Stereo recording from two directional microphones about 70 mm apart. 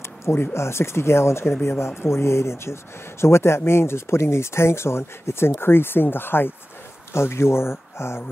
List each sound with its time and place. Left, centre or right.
0.2 s speech: left